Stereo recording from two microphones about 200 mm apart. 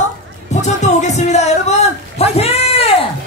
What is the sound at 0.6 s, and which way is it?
Music, 35° left (ahead or behind).